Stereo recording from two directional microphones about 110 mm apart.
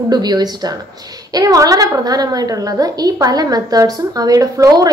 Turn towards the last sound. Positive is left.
turn(degrees=-35)  # may be behind; listen again after turning